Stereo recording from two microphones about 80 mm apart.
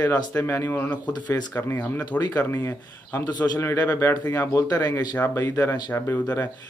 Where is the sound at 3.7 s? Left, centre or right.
Left.